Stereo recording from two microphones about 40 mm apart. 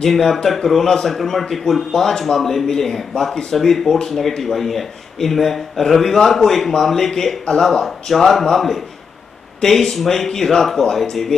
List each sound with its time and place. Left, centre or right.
0.0 s speech: centre